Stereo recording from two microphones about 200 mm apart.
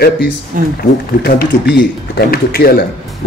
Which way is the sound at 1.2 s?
55° left (ahead or behind).